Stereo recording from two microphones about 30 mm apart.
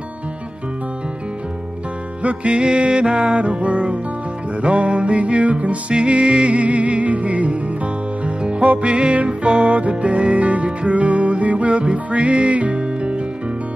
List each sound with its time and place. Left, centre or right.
2.2 s music: right
5.9 s music: right